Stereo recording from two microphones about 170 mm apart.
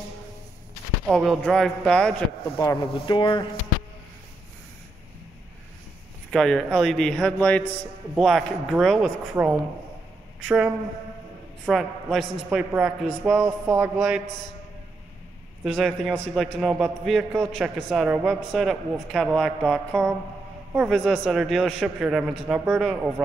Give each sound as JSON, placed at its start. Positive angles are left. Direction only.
{"t": 1.0, "sound": "a man's voice", "side_deg": -5}
{"t": 2.5, "sound": "speech", "side_deg": 20}
{"t": 6.3, "sound": "a man's voice", "side_deg": 5}
{"t": 9.3, "sound": "a man's voice", "side_deg": -10}
{"t": 15.6, "sound": "a man's voice", "side_deg": 0}